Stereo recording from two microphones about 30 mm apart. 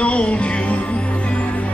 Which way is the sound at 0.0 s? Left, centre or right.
Left.